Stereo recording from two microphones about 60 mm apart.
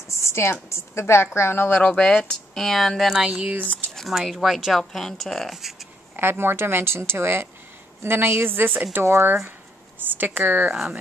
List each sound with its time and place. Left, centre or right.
0.2 s a woman's voice: left
1.9 s speech: centre
3.2 s speech: centre
4.1 s speech: centre
4.7 s speech: centre
6.1 s a woman's voice: right
10.1 s a woman's voice: right
10.7 s speech: centre